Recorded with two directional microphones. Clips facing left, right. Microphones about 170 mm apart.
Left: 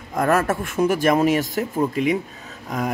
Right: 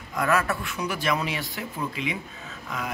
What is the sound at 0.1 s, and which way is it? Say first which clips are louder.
A man's voice: left 5 dB; 45° left (ahead or behind).